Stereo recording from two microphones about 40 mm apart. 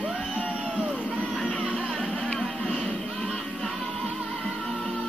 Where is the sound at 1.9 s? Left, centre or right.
Centre.